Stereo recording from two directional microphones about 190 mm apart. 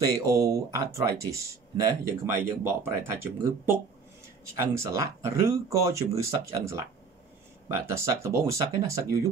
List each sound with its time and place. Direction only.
0.0 s speech: 15° right (ahead or behind)